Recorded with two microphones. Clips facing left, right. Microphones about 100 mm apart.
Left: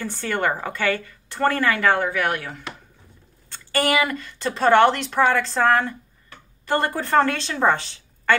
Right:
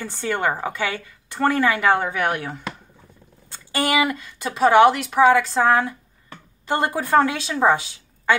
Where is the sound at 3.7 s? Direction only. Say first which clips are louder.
Even; 15° right (ahead or behind).